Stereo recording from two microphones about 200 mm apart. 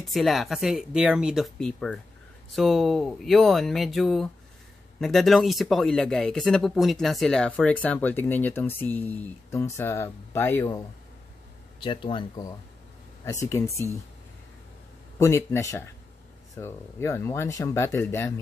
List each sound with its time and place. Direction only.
0.0 s speech: centre (ahead or behind)
11.8 s speech: 25° left (ahead or behind)
15.1 s speech: 15° left (ahead or behind)